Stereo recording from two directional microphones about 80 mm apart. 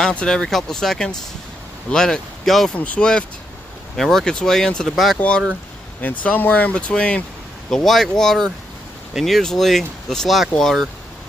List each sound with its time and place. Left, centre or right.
0.0 s speech: centre
2.7 s speech: centre
6.2 s speech: centre